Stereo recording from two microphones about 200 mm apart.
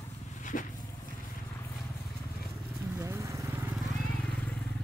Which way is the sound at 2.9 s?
15° right (ahead or behind).